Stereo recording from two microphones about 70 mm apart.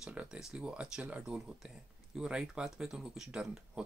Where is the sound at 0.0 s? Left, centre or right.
Centre.